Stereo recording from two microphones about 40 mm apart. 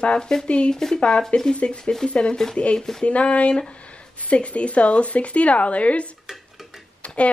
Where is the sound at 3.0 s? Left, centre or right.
Left.